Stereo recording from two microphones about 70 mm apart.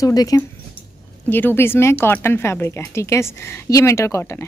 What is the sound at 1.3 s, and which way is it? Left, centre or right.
A woman's voice, left.